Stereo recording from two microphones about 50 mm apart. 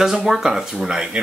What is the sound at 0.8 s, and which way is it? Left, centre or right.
Speech, centre.